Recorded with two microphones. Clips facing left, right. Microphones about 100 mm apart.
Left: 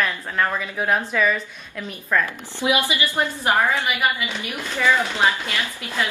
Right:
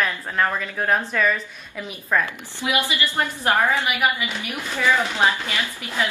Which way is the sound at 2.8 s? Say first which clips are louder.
Left 1 dB; 15° left (ahead or behind).